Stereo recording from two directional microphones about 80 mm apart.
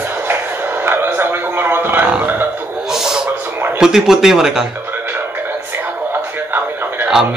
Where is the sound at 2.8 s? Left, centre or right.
Centre.